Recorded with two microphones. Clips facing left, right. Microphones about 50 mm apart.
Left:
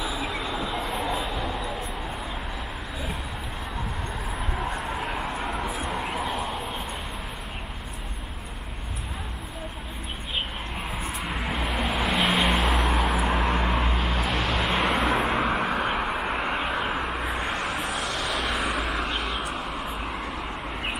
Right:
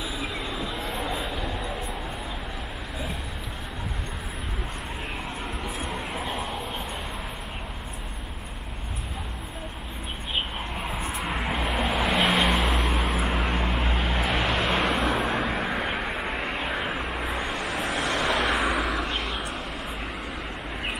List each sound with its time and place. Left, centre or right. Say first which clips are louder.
0.5 s a sound: left 2 dB; centre
5.8 s a sound: left 3 dB; centre
10.8 s a sound: right 1 dB; centre
11.1 s vehicle: right 1 dB; centre
13.9 s vehicle: right 1 dB; centre
15.3 s vehicle: left 2 dB; left
16.5 s vehicle: left 2 dB; centre
17.8 s vehicle: right 3 dB; right
18.3 s vehicle: right 2 dB; centre